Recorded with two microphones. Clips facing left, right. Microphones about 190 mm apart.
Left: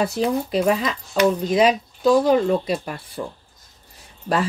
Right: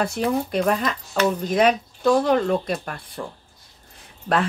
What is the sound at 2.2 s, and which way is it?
Speech, 5° left (ahead or behind).